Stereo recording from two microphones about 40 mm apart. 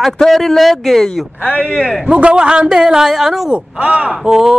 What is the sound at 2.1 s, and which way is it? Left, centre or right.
Speech, right.